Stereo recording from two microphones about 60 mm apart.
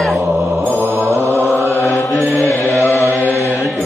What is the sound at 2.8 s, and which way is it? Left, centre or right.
Chant, left.